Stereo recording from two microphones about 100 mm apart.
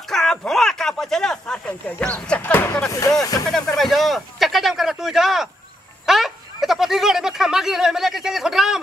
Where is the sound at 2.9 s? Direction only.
35° left (ahead or behind).